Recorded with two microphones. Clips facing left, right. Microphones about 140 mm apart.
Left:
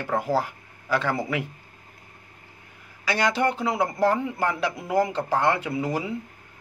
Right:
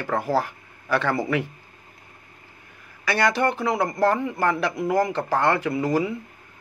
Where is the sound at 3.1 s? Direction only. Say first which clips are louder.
Right 2 dB; 15° left (ahead or behind).